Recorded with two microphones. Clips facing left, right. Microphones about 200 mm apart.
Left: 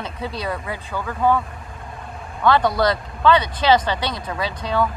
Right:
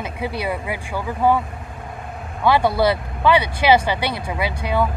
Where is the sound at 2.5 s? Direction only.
10° right (ahead or behind).